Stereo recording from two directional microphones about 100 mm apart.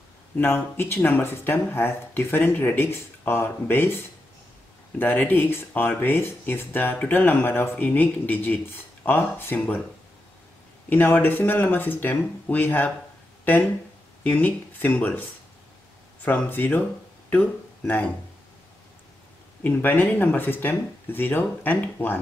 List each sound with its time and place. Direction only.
0.4 s speech: 25° left (ahead or behind)
10.9 s speech: 20° left (ahead or behind)
14.2 s speech: 15° left (ahead or behind)
16.3 s speech: 20° left (ahead or behind)
19.6 s speech: 15° left (ahead or behind)